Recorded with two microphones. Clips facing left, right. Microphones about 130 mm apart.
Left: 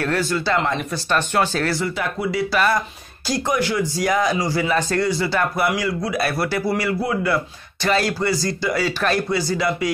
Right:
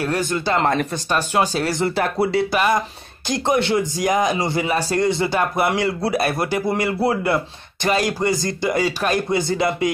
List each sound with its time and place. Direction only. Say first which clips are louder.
0.0 s speech: even; 15° right (ahead or behind)
2.0 s speech: right 4 dB; 35° right (ahead or behind)
2.5 s speech: right 1 dB; 20° right (ahead or behind)
4.7 s speech: even; 10° right (ahead or behind)
5.0 s speech: right 2 dB; 20° right (ahead or behind)
7.3 s speech: right 1 dB; 20° right (ahead or behind)